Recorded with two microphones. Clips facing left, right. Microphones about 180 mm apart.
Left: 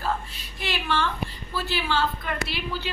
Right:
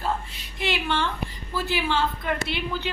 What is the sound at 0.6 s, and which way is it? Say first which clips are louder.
A woman's voice: right 1 dB; 20° right (ahead or behind).